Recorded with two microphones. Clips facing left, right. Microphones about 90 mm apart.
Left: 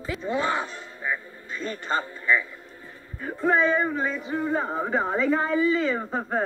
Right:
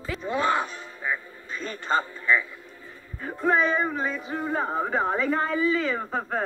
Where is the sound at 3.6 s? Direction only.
15° right (ahead or behind).